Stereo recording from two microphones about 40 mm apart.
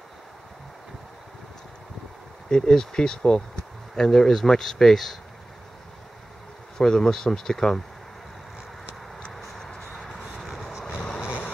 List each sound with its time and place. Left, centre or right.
2.5 s speech: centre
3.9 s speech: centre
6.8 s speech: centre
9.9 s vehicle: centre